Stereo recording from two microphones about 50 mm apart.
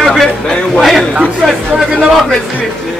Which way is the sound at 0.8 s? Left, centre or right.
Centre.